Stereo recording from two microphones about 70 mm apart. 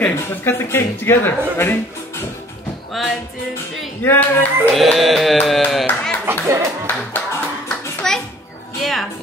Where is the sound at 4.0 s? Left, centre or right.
Left.